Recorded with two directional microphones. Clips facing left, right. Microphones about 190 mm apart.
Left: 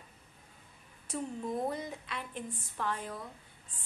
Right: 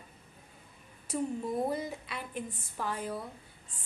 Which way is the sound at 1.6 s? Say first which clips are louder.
Right 3 dB; 5° right (ahead or behind).